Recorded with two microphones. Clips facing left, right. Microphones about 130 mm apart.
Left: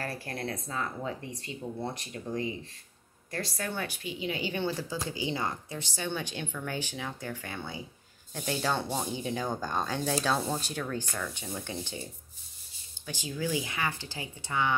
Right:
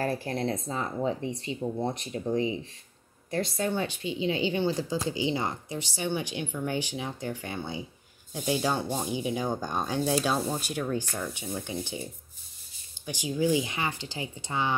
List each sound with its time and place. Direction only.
0.0 s speech: 20° right (ahead or behind)
13.0 s speech: 15° right (ahead or behind)